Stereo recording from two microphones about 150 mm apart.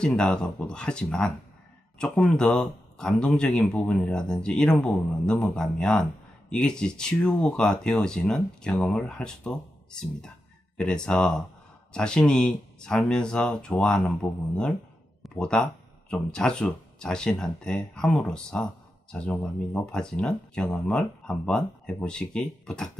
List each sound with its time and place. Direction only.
0.0 s speech: 5° left (ahead or behind)